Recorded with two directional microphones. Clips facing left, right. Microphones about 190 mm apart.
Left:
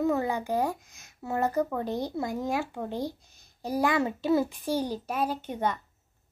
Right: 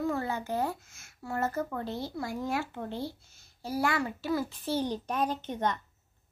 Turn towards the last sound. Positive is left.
turn(degrees=10)  # may be behind; listen again after turning